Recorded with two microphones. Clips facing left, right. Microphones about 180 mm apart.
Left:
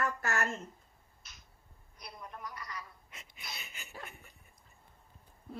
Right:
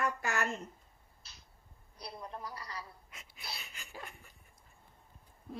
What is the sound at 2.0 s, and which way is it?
Speech, 30° right (ahead or behind).